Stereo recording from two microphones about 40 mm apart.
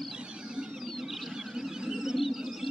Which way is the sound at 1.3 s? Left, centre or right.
Centre.